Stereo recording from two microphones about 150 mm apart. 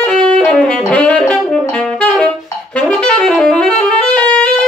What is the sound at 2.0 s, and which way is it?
Brass instrument, 10° left (ahead or behind).